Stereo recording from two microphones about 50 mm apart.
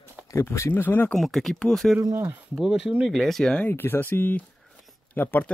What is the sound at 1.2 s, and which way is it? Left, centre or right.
Speech, centre.